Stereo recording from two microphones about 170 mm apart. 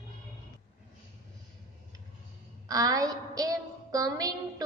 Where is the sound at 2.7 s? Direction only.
20° right (ahead or behind).